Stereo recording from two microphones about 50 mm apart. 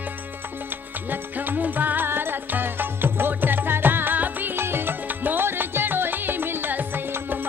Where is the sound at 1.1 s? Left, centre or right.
Right.